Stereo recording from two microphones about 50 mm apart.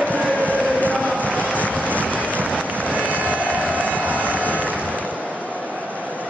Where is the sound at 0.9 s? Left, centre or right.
Right.